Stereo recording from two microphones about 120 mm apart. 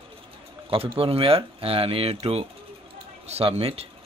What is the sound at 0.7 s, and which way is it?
Speech, 50° right (ahead or behind).